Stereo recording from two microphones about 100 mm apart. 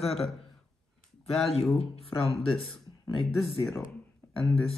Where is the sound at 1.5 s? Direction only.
85° left.